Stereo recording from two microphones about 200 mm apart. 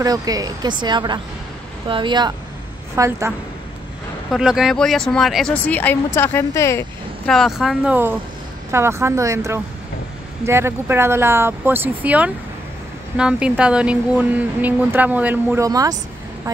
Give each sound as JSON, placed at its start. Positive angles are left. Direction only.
{"t": 0.0, "sound": "speech", "side_deg": -20}
{"t": 4.3, "sound": "speech", "side_deg": 0}
{"t": 7.2, "sound": "speech", "side_deg": 0}